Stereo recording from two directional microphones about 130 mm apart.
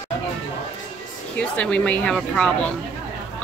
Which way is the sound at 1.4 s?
10° left (ahead or behind).